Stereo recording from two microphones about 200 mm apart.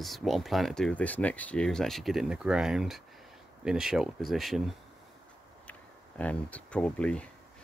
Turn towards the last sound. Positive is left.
turn(degrees=5)  # may be behind; listen again after turning